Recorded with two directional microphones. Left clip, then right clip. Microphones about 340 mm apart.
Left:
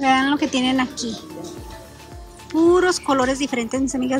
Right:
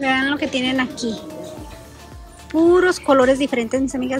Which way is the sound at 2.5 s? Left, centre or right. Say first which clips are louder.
Right 1 dB; centre.